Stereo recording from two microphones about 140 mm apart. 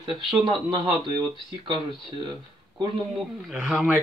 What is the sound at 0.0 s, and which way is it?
Speech, 35° right (ahead or behind).